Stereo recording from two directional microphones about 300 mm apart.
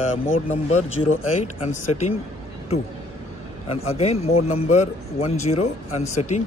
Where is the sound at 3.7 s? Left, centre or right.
Centre.